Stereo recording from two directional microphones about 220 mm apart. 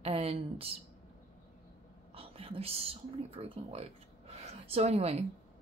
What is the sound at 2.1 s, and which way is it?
A woman's voice, 25° right (ahead or behind).